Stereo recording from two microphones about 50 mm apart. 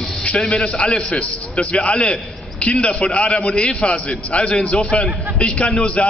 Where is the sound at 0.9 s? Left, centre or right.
Left.